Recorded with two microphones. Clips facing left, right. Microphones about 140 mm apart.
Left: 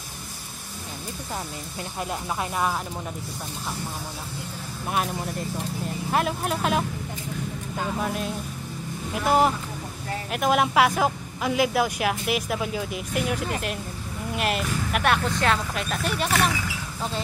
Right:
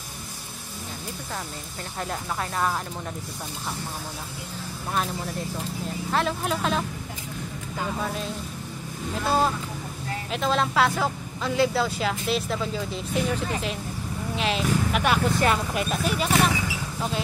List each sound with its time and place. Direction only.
6.1 s speech: 5° left (ahead or behind)
8.0 s speech: 5° left (ahead or behind)
9.1 s speech: 15° left (ahead or behind); by 16.3 s centre (ahead or behind)